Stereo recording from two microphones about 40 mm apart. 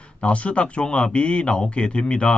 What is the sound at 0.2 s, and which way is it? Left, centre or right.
Speech, left.